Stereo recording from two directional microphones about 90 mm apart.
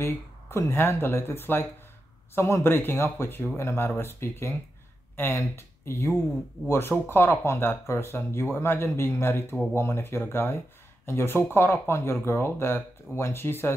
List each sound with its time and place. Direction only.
0.0 s speech: 30° left (ahead or behind)